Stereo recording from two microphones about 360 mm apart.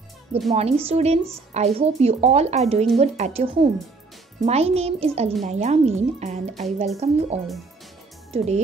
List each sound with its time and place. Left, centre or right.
0.6 s speech: centre